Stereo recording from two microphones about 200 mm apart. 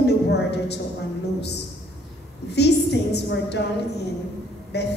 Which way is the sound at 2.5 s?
55° left (ahead or behind).